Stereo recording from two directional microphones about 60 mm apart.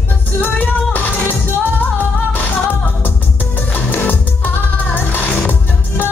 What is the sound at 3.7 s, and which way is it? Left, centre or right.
Music, left.